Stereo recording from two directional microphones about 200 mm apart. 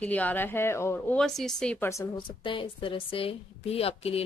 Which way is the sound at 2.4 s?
25° left (ahead or behind).